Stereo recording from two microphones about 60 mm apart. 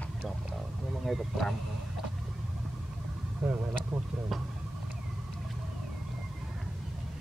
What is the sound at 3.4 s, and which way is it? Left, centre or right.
Speech, right.